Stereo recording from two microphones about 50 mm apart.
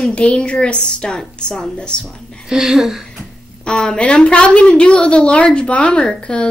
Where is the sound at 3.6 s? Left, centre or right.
Centre.